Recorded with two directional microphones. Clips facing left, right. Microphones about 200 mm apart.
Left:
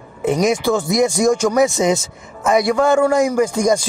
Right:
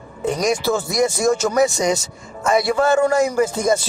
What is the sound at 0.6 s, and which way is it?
Speech, 15° left (ahead or behind).